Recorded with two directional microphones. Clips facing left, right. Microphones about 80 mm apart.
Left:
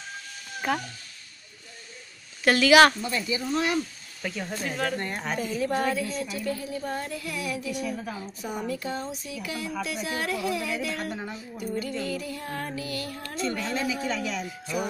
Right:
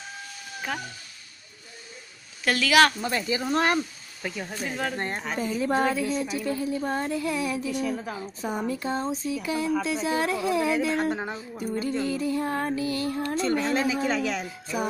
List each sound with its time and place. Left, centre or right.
0.7 s speech: centre
2.4 s speech: centre
3.0 s speech: right
3.3 s speech: right
4.2 s speech: centre
4.9 s a woman's voice: right